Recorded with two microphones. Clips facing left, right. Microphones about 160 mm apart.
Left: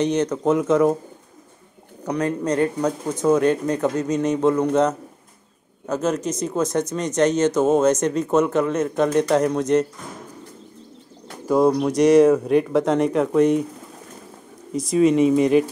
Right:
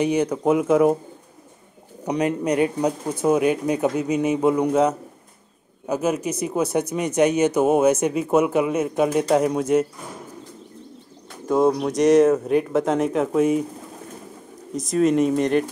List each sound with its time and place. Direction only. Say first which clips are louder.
0.0 s speech: even; 10° right (ahead or behind)
2.0 s speech: right 1 dB; 15° right (ahead or behind)
11.4 s speech: left 1 dB; centre (ahead or behind)
14.7 s speech: left 2 dB; centre (ahead or behind)